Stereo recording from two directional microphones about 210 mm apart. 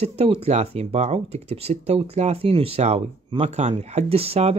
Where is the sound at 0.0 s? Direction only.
30° right (ahead or behind).